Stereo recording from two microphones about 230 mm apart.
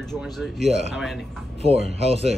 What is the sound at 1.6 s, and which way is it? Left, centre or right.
Speech, right.